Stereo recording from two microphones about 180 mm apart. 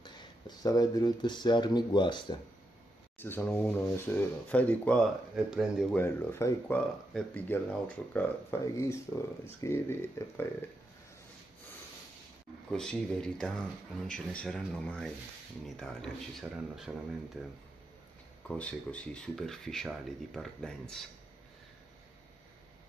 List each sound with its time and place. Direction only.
0.0 s speech: 20° left (ahead or behind)
3.2 s speech: 10° left (ahead or behind)
5.3 s speech: 5° right (ahead or behind)
5.9 s speech: 15° left (ahead or behind)
12.6 s speech: 5° left (ahead or behind)
18.5 s speech: 5° left (ahead or behind)